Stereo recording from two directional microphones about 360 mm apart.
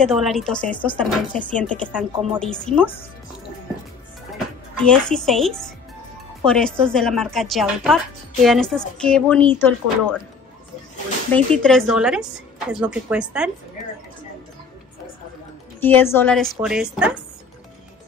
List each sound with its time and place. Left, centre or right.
0.0 s speech: centre
4.7 s speech: centre
11.3 s speech: centre
15.8 s speech: centre